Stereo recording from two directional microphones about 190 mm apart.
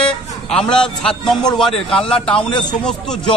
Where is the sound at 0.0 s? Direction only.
5° left (ahead or behind).